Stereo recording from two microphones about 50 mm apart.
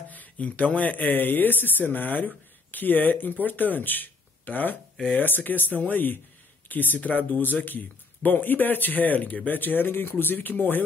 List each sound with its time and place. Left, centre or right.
0.1 s speech: left